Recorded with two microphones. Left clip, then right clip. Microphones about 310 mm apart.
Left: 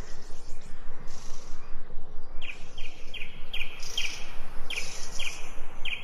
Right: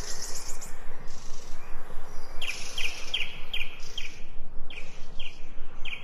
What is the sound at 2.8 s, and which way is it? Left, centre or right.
Bird vocalization, right.